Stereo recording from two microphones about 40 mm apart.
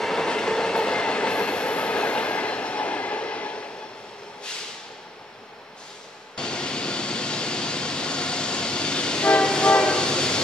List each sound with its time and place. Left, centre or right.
0.0 s train: centre; by 3.6 s left
6.3 s vehicle: left